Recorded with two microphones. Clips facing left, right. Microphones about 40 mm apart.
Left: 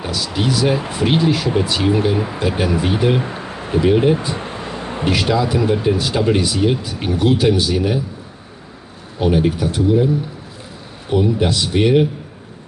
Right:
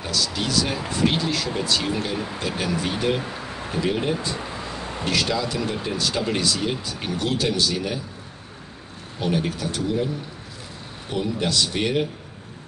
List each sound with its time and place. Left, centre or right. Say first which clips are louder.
0.0 s speech: left 5 dB; left
4.5 s a sound: left 5 dB; left
5.1 s speech: left 6 dB; left
9.2 s speech: left 8 dB; centre
11.1 s speech: left 8 dB; centre